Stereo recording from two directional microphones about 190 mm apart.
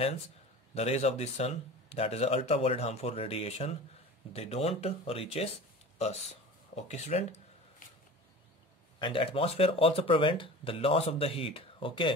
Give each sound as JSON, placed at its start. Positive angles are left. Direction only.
{"t": 0.7, "sound": "speech", "side_deg": 35}
{"t": 6.7, "sound": "speech", "side_deg": 35}
{"t": 9.0, "sound": "speech", "side_deg": 25}